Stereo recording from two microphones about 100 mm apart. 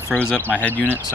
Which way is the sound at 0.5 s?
15° left (ahead or behind).